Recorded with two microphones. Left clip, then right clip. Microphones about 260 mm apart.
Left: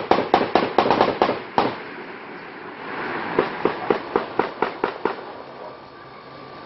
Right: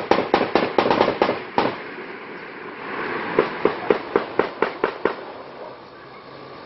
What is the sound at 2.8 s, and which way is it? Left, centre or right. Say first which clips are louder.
Vehicle: right 1 dB; centre.